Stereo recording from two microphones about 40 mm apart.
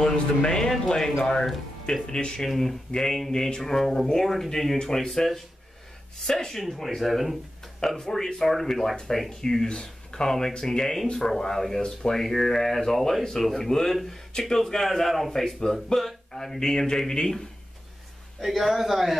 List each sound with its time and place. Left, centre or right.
0.0 s a sound: centre
1.2 s speech: centre
2.0 s a man's voice: centre
8.0 s speech: centre
12.2 s speech: centre
18.4 s a man's voice: centre